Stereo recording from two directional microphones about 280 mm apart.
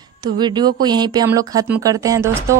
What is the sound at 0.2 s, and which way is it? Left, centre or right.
Speech, centre.